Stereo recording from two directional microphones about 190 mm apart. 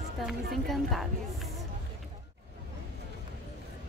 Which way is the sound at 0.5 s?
Centre (ahead or behind).